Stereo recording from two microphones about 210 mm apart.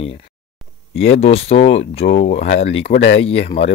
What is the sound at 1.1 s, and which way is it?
Speech, 30° left (ahead or behind).